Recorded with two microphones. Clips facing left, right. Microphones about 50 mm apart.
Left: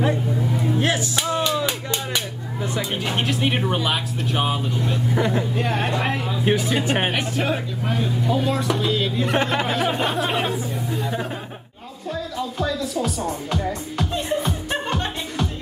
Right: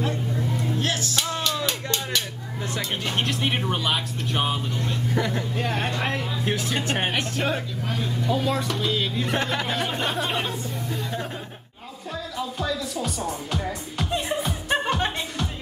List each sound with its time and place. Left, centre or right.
0.7 s speech: centre
12.1 s music: centre